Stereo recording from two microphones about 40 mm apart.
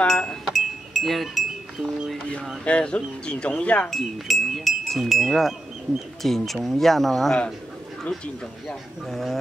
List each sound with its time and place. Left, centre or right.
0.5 s chink: centre
2.6 s speech: left
3.5 s wind chime: left
3.9 s speech: centre
8.6 s speech: centre